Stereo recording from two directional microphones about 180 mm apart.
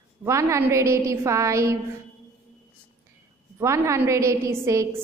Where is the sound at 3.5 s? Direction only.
15° right (ahead or behind).